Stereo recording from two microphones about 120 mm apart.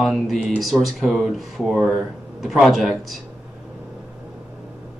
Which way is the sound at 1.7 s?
10° right (ahead or behind).